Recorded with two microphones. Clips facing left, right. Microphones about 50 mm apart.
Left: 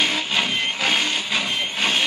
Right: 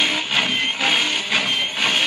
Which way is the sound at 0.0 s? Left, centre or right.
Centre.